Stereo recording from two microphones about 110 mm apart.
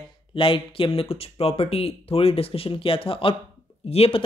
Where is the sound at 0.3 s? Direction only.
55° left (ahead or behind).